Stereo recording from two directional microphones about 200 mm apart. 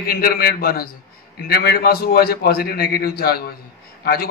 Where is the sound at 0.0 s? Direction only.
50° left (ahead or behind).